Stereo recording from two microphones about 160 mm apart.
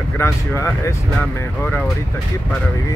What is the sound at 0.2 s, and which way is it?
Speech, 20° left (ahead or behind).